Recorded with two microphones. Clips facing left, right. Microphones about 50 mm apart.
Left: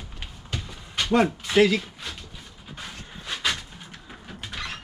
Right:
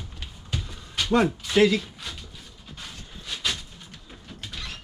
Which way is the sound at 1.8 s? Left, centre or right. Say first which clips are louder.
Left 1 dB; centre.